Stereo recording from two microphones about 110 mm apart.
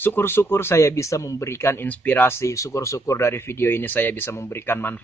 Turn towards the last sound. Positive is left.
turn(degrees=20)  # may be behind; listen again after turning